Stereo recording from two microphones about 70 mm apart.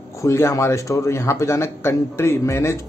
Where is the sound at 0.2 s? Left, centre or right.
Left.